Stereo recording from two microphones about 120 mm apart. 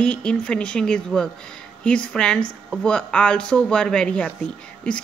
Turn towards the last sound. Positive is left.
turn(degrees=10)  # may be behind; listen again after turning